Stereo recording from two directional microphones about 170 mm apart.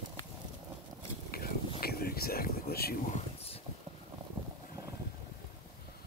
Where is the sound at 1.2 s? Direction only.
60° left (ahead or behind).